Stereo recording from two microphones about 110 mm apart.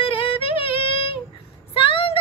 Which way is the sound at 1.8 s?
55° left (ahead or behind).